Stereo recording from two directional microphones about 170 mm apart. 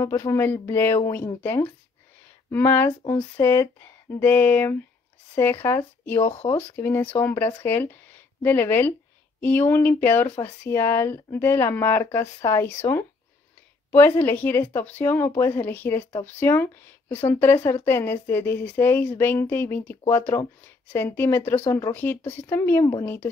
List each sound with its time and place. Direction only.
0.0 s speech: 15° left (ahead or behind)